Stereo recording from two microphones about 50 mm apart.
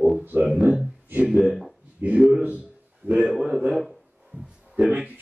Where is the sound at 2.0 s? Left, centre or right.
Right.